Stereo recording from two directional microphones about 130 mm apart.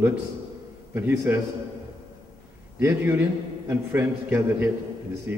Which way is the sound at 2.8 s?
20° right (ahead or behind).